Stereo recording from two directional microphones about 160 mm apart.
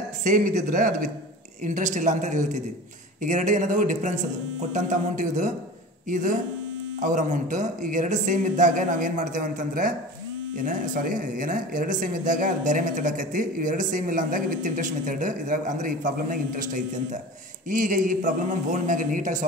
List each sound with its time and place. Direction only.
0.2 s speech: 55° right (ahead or behind)